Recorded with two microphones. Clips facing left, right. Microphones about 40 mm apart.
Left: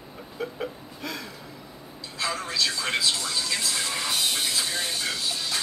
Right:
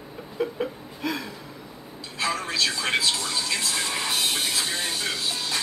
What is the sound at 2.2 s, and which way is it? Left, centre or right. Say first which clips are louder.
Speech: right 2 dB; right.